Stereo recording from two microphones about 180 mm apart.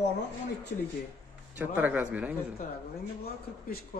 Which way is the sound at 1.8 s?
10° right (ahead or behind).